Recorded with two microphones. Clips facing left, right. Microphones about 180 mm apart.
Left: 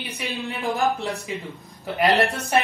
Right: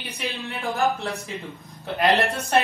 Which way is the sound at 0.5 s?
15° left (ahead or behind).